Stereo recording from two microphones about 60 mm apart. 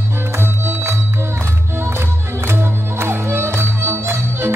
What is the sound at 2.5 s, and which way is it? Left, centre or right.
Music, right.